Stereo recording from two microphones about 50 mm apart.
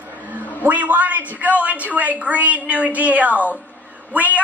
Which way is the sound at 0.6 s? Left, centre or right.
Right.